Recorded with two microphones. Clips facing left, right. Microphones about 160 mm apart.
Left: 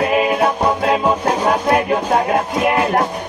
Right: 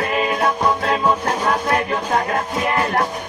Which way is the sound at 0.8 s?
10° left (ahead or behind).